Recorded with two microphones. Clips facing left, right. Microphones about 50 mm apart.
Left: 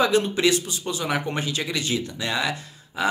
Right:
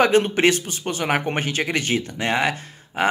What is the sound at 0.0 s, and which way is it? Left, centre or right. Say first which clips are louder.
A man's voice: right 3 dB; right.